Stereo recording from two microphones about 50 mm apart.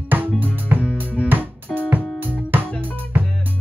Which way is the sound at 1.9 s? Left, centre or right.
Right.